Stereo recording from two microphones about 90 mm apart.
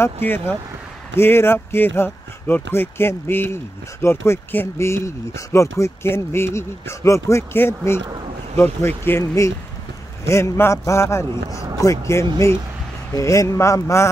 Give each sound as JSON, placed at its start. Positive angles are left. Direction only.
{"t": 0.0, "sound": "speech", "side_deg": 25}